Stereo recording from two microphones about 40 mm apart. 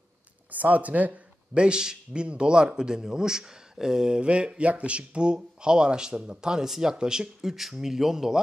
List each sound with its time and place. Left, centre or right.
0.5 s speech: right
1.5 s a man's voice: right